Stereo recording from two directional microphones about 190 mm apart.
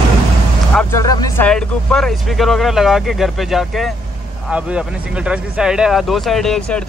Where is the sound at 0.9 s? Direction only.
20° left (ahead or behind).